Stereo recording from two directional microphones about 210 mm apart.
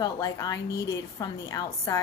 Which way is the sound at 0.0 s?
15° left (ahead or behind).